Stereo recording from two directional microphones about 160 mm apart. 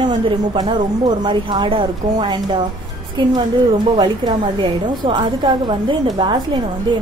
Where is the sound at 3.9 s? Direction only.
30° right (ahead or behind).